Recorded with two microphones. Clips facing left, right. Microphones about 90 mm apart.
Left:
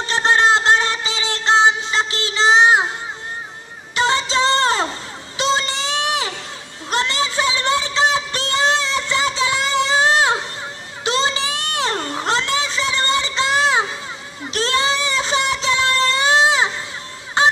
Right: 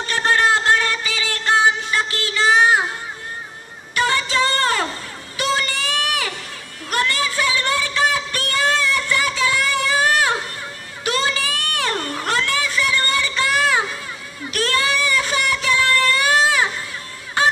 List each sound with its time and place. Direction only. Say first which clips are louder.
0.0 s music: left 2 dB; 25° left (ahead or behind)
3.9 s music: left 1 dB; 25° left (ahead or behind)
5.4 s a sound: left 2 dB; 25° left (ahead or behind)
17.4 s music: left 2 dB; 25° left (ahead or behind)